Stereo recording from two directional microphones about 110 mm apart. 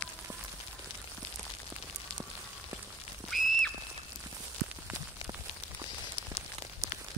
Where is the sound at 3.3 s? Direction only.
Centre (ahead or behind).